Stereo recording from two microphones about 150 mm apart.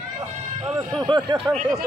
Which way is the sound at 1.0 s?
30° right (ahead or behind).